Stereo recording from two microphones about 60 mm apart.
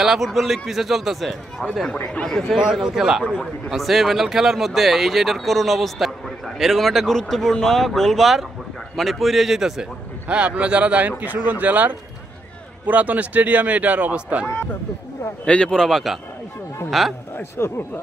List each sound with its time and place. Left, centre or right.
0.0 s speech: centre
1.6 s speech: centre
2.5 s a man's voice: centre
10.2 s speech: right
15.4 s speech: centre
17.6 s speech: left